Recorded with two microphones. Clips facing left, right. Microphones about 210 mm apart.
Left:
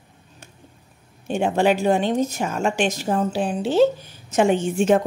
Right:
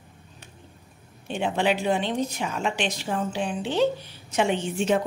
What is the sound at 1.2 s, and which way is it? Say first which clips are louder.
A woman's voice: left 5 dB; 45° left (ahead or behind).